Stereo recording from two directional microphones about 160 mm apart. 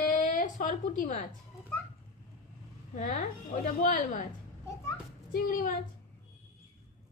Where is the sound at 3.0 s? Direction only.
50° left (ahead or behind).